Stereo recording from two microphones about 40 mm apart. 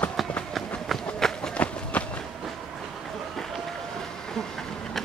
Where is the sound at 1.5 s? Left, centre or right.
Left.